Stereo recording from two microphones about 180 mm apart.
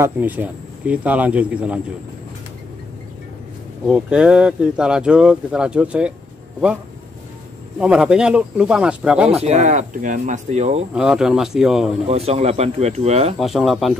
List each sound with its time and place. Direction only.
0.0 s speech: 10° right (ahead or behind)
3.8 s speech: 5° right (ahead or behind)
7.8 s speech: 5° right (ahead or behind)
9.3 s speech: 35° right (ahead or behind)
11.0 s speech: 5° right (ahead or behind)
12.1 s speech: 35° right (ahead or behind)
13.4 s speech: centre (ahead or behind)